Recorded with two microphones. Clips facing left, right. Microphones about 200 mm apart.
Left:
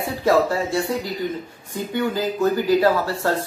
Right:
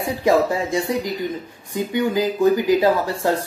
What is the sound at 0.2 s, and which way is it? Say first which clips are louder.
Speech: even; 15° right (ahead or behind).